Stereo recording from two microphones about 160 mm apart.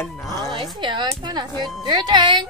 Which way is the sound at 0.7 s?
30° right (ahead or behind).